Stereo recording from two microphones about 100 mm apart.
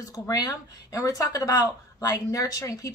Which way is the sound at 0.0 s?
35° left (ahead or behind).